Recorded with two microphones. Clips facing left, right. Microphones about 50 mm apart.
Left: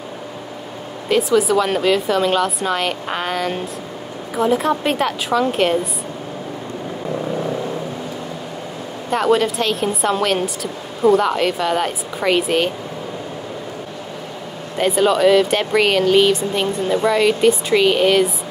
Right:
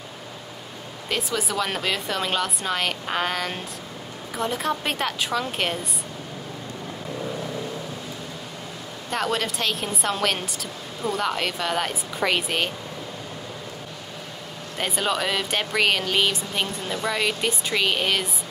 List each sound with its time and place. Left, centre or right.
1.0 s a woman's voice: centre
9.1 s a woman's voice: centre
14.8 s a woman's voice: centre